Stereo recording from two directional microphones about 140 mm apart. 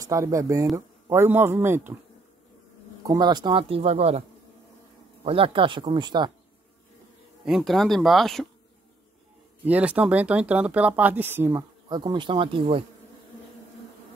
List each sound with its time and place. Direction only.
0.0 s speech: 25° right (ahead or behind)
3.0 s speech: 30° right (ahead or behind); by 4.2 s 45° right (ahead or behind)
5.2 s speech: 40° right (ahead or behind)
7.4 s speech: centre (ahead or behind)
9.7 s speech: 10° right (ahead or behind)
11.9 s speech: 30° right (ahead or behind)